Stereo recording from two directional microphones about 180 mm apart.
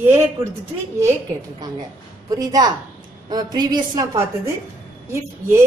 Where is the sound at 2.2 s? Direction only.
20° right (ahead or behind).